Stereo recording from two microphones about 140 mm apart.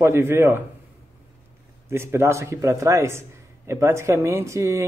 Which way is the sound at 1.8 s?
20° right (ahead or behind).